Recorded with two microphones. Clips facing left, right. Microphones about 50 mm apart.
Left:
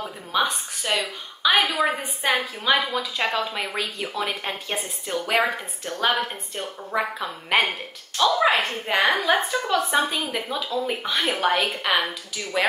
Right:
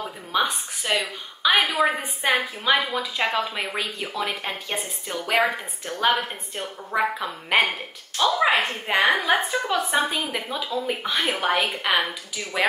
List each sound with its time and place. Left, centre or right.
0.3 s a woman's voice: centre
10.1 s a woman's voice: centre